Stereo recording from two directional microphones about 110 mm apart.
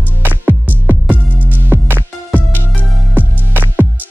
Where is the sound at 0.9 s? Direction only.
15° right (ahead or behind).